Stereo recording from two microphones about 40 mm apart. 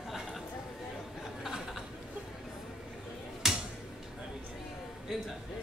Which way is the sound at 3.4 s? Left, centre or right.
Centre.